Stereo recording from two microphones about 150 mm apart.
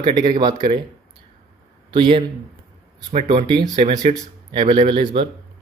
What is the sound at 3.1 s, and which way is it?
Speech, 45° right (ahead or behind).